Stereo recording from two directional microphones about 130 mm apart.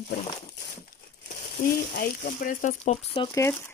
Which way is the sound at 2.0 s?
90° left.